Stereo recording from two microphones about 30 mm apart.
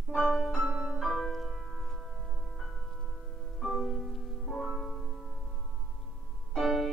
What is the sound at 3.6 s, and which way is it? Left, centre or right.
Music, centre.